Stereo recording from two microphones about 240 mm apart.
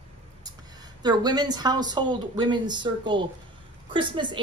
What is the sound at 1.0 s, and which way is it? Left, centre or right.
A woman's voice, centre.